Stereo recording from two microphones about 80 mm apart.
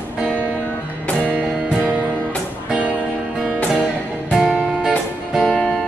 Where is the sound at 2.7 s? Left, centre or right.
Centre.